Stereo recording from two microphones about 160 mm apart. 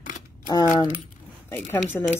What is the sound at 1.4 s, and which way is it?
Speech, 10° left (ahead or behind).